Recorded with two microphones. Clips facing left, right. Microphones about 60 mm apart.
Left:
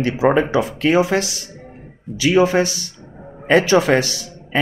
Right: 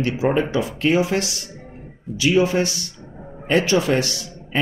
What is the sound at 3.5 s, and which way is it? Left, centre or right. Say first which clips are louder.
Speech: left 4 dB; left.